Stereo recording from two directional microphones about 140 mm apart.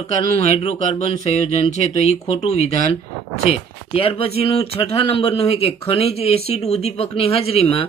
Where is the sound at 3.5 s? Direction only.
45° left (ahead or behind).